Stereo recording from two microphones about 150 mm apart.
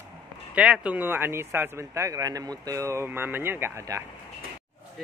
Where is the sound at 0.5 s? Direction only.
10° right (ahead or behind).